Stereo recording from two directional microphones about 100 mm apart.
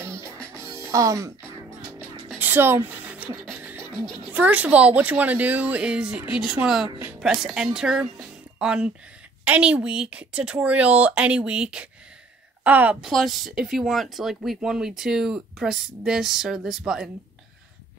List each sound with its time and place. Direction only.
0.6 s music: 30° right (ahead or behind)
2.0 s music: 20° right (ahead or behind)
3.5 s beatboxing: 15° right (ahead or behind)
3.9 s a child's voice: 50° left (ahead or behind)
4.3 s a woman's voice: 15° right (ahead or behind)
13.0 s speech: centre (ahead or behind)